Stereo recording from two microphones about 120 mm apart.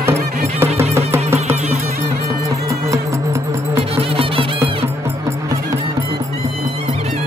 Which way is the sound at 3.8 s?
55° right (ahead or behind).